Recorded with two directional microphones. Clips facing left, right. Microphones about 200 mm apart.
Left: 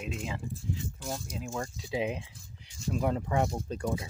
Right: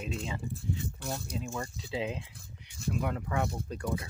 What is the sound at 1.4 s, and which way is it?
Speech, 15° left (ahead or behind).